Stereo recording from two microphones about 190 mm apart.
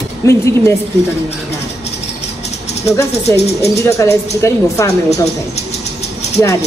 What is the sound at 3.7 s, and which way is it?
A woman's voice, 15° left (ahead or behind).